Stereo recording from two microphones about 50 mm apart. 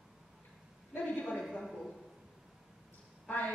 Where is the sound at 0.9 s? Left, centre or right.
Left.